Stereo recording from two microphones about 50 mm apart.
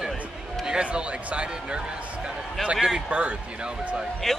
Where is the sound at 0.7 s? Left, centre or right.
Centre.